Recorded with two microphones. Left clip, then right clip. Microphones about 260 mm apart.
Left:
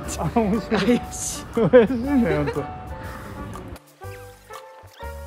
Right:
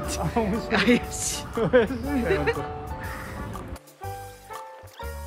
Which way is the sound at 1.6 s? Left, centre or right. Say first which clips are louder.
Left 6 dB; left.